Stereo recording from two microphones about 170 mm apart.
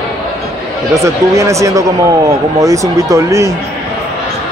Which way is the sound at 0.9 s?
20° right (ahead or behind).